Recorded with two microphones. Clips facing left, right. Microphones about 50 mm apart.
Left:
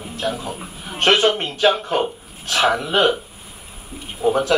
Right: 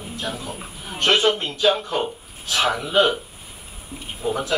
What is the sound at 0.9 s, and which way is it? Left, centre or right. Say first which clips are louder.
Speech: left 3 dB; left.